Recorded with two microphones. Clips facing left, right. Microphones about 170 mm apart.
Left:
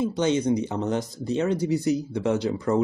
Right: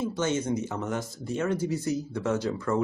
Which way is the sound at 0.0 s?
15° left (ahead or behind).